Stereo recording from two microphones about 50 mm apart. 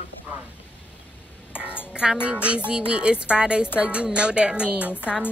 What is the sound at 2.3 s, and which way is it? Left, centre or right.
Speech, right.